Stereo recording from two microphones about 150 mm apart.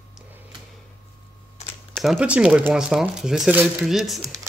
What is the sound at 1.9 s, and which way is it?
Speech, 5° right (ahead or behind).